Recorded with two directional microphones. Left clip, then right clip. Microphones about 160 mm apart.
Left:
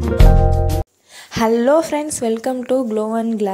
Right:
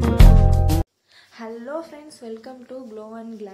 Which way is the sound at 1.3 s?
60° left (ahead or behind).